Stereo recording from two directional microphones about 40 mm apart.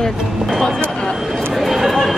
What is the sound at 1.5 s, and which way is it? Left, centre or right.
Speech, centre.